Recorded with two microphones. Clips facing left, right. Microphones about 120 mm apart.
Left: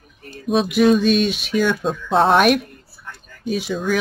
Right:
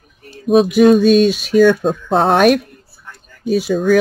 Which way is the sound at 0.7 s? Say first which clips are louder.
Right 4 dB; 45° right (ahead or behind).